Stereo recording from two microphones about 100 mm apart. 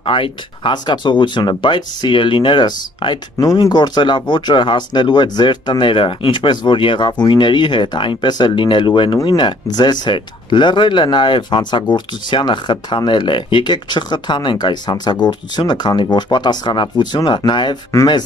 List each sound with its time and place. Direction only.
0.0 s speech: 60° left (ahead or behind)